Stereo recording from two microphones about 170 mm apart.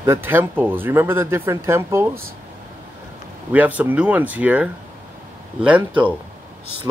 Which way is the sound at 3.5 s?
10° right (ahead or behind).